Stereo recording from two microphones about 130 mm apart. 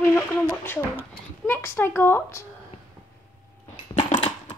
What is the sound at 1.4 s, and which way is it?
Speech, 15° left (ahead or behind).